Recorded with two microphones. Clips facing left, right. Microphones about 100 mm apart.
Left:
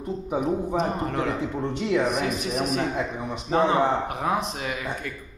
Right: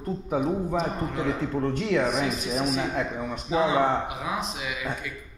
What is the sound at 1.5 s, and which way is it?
Speech, 10° left (ahead or behind).